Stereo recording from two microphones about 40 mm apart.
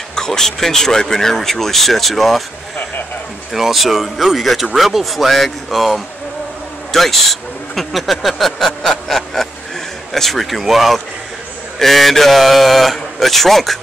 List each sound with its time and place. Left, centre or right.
0.1 s speech: centre
3.5 s speech: centre
6.9 s a sound: centre
10.1 s speech: centre